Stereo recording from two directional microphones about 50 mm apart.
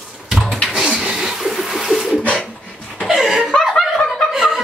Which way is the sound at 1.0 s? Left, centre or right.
Centre.